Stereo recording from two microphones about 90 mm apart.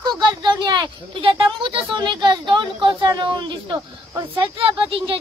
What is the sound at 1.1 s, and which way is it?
Speech, 85° right.